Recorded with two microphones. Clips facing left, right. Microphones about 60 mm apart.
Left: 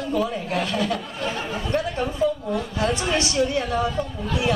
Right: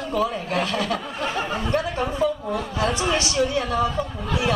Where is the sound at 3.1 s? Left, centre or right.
Left.